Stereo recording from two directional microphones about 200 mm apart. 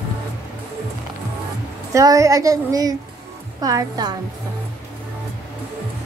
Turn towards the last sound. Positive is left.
turn(degrees=-20)  # may be behind; listen again after turning